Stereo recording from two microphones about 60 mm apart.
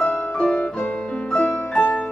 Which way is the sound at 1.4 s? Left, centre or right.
Left.